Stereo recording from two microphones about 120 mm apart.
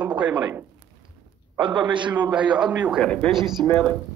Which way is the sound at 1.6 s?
40° right (ahead or behind).